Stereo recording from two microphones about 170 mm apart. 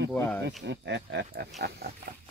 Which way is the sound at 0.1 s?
10° left (ahead or behind).